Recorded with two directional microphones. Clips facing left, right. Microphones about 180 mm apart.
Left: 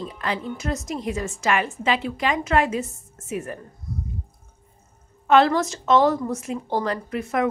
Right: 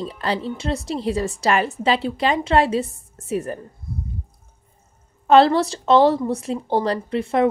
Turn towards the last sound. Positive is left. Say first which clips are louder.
# right 5 dB
turn(degrees=-30)  # may be behind; listen again after turning